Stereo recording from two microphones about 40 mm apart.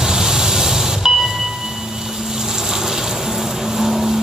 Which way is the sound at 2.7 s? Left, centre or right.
Centre.